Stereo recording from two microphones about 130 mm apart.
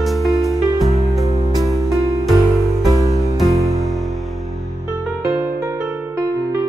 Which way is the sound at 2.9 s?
25° right (ahead or behind).